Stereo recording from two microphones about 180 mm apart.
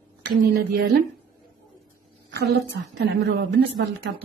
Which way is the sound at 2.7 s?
70° right (ahead or behind).